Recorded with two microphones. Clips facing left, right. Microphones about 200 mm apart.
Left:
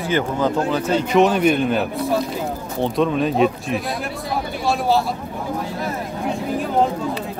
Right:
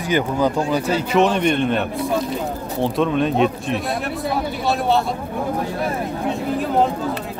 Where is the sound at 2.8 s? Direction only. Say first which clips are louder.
Even; centre (ahead or behind).